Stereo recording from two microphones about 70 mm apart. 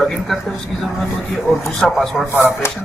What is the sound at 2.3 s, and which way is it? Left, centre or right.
Speech, left.